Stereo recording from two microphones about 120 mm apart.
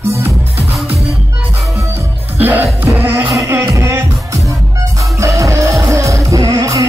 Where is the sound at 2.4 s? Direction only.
15° right (ahead or behind).